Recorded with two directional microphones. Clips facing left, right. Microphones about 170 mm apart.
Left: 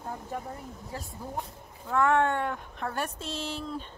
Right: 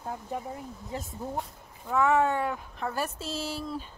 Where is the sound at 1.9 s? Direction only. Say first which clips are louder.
Even; 5° right (ahead or behind).